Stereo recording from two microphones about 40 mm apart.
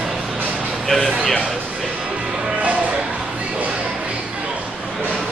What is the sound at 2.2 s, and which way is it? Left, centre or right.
Music, right.